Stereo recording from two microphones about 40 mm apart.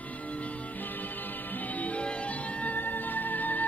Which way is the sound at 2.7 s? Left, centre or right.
Left.